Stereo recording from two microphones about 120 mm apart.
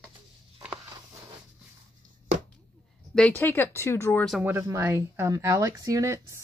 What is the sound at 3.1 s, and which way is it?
Speech, 10° left (ahead or behind).